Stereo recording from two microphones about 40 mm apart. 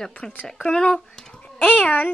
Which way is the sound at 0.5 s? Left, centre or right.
Centre.